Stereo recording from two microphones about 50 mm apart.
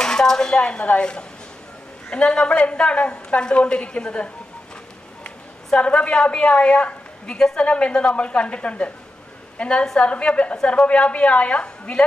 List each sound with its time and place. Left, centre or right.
0.0 s a woman's voice: centre
5.8 s a woman's voice: left
7.3 s a woman's voice: centre